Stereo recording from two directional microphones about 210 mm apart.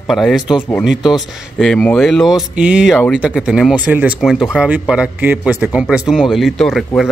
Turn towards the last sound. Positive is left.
turn(degrees=0)  # may be behind; listen again after turning